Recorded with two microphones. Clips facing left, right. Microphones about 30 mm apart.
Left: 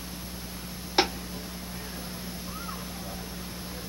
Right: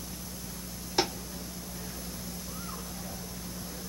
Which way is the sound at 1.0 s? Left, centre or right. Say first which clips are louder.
Left 4 dB; left.